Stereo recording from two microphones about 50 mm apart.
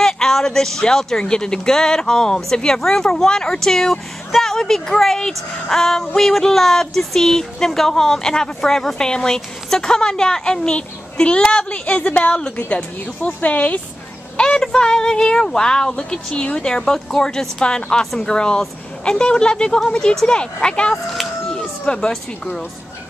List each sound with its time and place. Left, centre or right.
0.0 s speech: centre
11.8 s a woman's voice: left
14.3 s speech: centre
20.9 s chicken: centre